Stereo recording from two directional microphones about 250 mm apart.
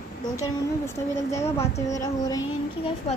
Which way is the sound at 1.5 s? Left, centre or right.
Centre.